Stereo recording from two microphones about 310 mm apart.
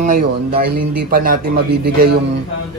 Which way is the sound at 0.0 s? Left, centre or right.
Right.